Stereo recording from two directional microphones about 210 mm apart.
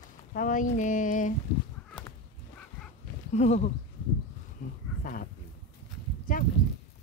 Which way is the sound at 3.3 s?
35° left (ahead or behind).